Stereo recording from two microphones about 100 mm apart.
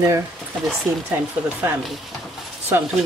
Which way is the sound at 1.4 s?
20° right (ahead or behind).